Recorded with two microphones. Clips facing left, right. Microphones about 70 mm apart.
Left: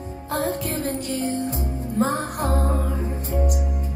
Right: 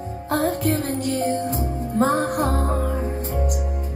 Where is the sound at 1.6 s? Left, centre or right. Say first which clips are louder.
Right 2 dB; right.